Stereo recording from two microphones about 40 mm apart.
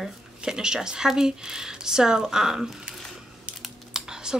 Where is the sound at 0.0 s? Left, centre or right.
Centre.